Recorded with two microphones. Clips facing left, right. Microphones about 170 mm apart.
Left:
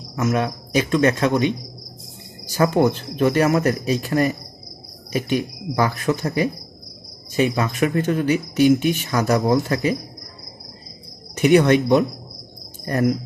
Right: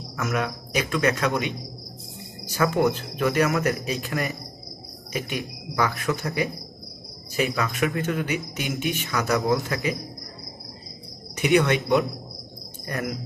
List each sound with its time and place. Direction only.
0.1 s speech: 30° left (ahead or behind)
2.5 s speech: 35° left (ahead or behind)
11.4 s speech: 40° left (ahead or behind)